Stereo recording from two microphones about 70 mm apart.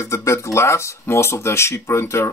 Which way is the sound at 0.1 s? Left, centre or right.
Left.